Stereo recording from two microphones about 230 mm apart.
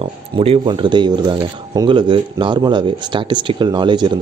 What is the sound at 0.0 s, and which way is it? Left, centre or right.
Speech, right.